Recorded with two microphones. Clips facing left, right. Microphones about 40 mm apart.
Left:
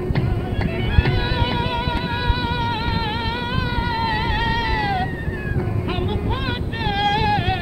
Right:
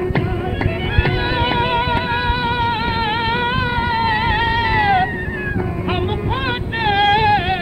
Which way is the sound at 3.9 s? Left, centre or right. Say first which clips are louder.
Right 5 dB; right.